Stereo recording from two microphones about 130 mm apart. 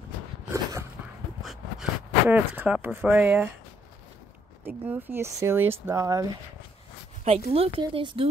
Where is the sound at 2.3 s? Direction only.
15° right (ahead or behind).